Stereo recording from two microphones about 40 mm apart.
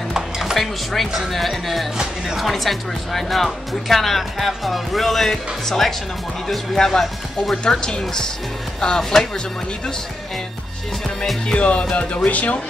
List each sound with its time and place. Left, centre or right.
0.1 s chopping: centre
1.3 s speech: centre; by 9.0 s left
11.4 s speech: left